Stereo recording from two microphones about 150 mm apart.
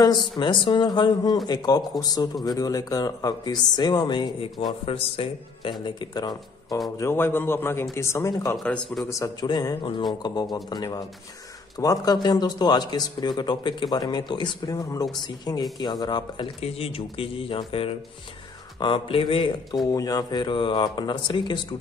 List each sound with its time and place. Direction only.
0.0 s speech: 30° left (ahead or behind)
7.0 s a man's voice: 15° left (ahead or behind)
8.6 s a man's voice: 5° left (ahead or behind)
9.1 s speech: 25° left (ahead or behind)
16.6 s speech: 40° left (ahead or behind)